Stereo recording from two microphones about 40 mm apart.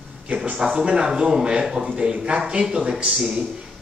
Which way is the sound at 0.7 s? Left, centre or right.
Right.